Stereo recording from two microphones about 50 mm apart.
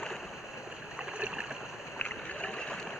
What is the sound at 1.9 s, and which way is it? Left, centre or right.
Boat, centre.